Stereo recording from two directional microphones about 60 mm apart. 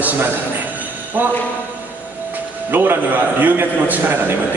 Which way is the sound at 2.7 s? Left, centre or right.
Right.